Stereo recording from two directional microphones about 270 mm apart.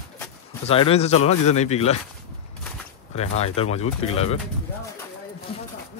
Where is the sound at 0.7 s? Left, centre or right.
Left.